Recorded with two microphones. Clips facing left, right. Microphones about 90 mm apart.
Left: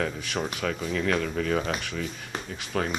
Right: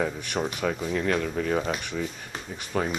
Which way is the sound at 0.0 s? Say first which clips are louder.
Right 2 dB; 10° right (ahead or behind).